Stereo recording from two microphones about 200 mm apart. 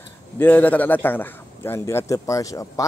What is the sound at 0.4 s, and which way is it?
A man's voice, 10° left (ahead or behind).